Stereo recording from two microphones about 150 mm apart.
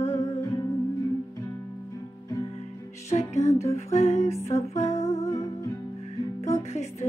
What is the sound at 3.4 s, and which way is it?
Music, 45° left (ahead or behind).